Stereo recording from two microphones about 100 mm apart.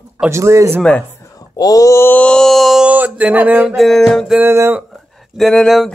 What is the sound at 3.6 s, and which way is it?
Speech, centre (ahead or behind).